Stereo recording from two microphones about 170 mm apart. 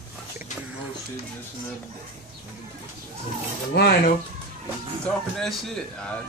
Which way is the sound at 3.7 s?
70° left (ahead or behind).